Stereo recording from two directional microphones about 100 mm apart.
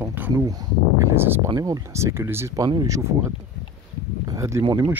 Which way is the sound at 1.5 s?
40° right (ahead or behind).